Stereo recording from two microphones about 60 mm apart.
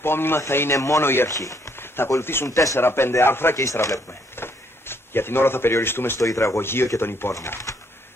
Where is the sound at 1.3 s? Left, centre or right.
Left.